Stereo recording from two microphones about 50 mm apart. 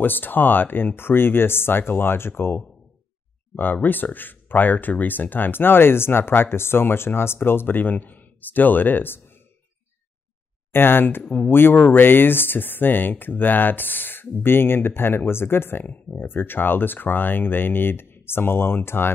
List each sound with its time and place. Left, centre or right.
0.0 s speech: left
3.5 s speech: left
10.7 s speech: left